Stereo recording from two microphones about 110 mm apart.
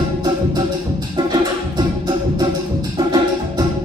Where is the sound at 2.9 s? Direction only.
40° right (ahead or behind).